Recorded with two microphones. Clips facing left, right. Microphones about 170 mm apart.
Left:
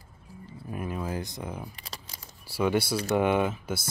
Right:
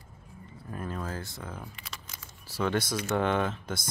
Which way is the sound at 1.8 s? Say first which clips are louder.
Left 1 dB; 35° left (ahead or behind).